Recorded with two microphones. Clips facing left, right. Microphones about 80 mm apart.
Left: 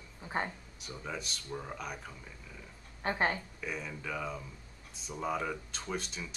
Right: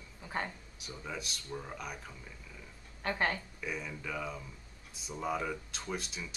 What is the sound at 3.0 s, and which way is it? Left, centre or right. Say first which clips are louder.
Speech: left 2 dB; left.